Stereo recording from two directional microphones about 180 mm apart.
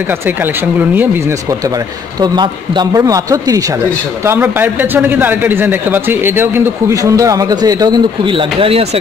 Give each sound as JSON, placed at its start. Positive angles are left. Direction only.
{"t": 0.4, "sound": "a man's voice", "side_deg": -10}
{"t": 2.1, "sound": "a man's voice", "side_deg": -25}